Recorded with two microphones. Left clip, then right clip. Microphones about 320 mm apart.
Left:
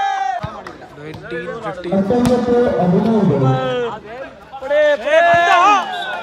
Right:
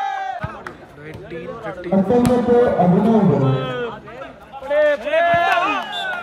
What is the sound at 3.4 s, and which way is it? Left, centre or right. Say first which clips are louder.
Speech: left 4 dB; left.